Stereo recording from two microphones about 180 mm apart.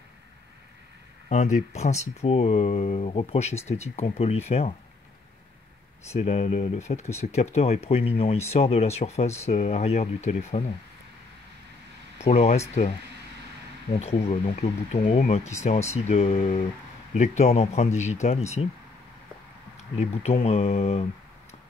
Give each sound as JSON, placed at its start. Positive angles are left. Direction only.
{"t": 1.3, "sound": "speech", "side_deg": 40}
{"t": 6.1, "sound": "speech", "side_deg": 35}
{"t": 12.2, "sound": "speech", "side_deg": 35}
{"t": 13.9, "sound": "speech", "side_deg": 35}
{"t": 19.8, "sound": "speech", "side_deg": 35}